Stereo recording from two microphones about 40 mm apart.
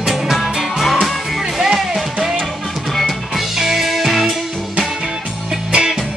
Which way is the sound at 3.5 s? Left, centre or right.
Centre.